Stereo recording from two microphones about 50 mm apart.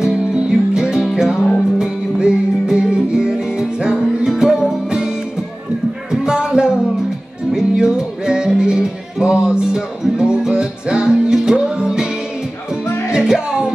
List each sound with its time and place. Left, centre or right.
0.0 s music: centre
6.2 s music: centre
13.1 s music: centre